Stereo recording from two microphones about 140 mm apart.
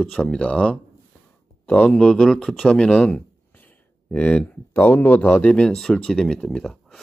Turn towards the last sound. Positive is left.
turn(degrees=5)  # may be behind; listen again after turning